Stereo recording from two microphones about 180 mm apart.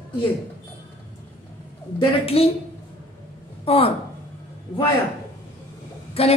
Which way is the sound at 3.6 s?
30° left (ahead or behind).